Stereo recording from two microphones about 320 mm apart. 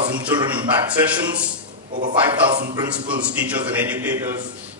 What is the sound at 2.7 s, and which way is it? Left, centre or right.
A man's voice, centre.